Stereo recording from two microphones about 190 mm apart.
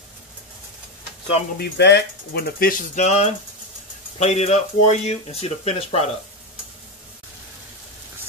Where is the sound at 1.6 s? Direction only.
65° left (ahead or behind).